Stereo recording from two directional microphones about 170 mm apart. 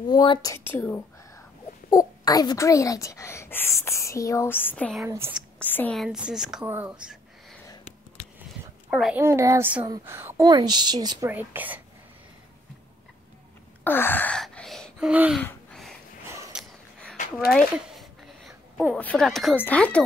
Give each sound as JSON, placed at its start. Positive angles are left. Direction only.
{"t": 0.1, "sound": "a woman's voice", "side_deg": 25}
{"t": 0.7, "sound": "speech", "side_deg": 10}
{"t": 5.0, "sound": "a child's voice", "side_deg": -15}
{"t": 5.6, "sound": "speech", "side_deg": 10}
{"t": 5.9, "sound": "a woman's voice", "side_deg": -5}
{"t": 8.9, "sound": "a child's voice", "side_deg": -5}
{"t": 10.5, "sound": "a woman's voice", "side_deg": -25}
{"t": 11.3, "sound": "a child's voice", "side_deg": -10}
{"t": 13.8, "sound": "speech", "side_deg": 10}
{"t": 15.4, "sound": "a sound", "side_deg": 5}
{"t": 16.3, "sound": "a sound", "side_deg": -20}
{"t": 17.8, "sound": "a sound", "side_deg": 0}
{"t": 18.9, "sound": "a woman's voice", "side_deg": 5}